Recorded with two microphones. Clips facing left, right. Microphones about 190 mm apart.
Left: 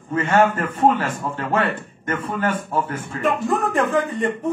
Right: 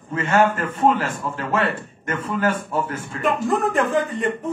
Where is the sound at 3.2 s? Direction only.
Centre (ahead or behind).